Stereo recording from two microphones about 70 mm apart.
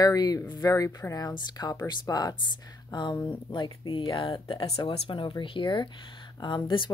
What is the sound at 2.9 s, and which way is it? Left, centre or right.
Speech, left.